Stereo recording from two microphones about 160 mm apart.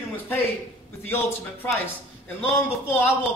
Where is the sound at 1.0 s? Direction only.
15° left (ahead or behind).